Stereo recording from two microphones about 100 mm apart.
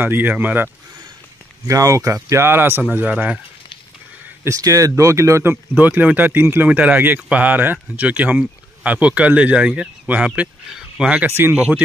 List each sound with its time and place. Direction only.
0.0 s speech: 20° right (ahead or behind)
1.7 s speech: 35° right (ahead or behind); by 3.3 s 15° right (ahead or behind)
4.5 s speech: 35° right (ahead or behind)